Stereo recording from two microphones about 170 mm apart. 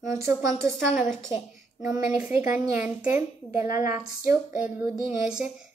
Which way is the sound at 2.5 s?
10° right (ahead or behind).